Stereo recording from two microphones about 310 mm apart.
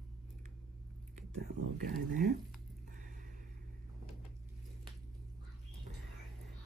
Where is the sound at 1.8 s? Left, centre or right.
Right.